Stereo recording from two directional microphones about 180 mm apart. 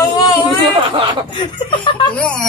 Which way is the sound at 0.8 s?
30° right (ahead or behind).